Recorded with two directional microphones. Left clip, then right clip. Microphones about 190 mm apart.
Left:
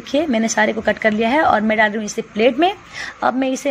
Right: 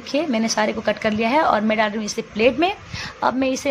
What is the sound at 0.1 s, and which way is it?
A woman's voice, 15° left (ahead or behind).